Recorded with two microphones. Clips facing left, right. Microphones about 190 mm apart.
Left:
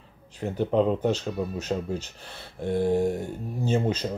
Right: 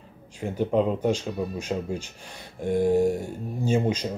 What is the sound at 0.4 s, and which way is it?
Speech, 10° right (ahead or behind).